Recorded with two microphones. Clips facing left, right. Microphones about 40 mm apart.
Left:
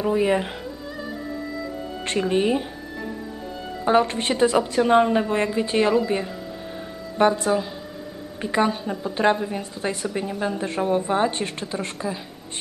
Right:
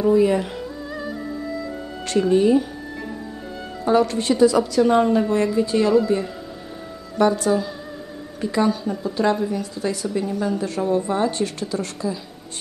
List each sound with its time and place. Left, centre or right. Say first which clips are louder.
0.0 s speech: right 4 dB; left
2.0 s speech: right 4 dB; left
3.8 s speech: right 1 dB; left
7.2 s speech: right 1 dB; left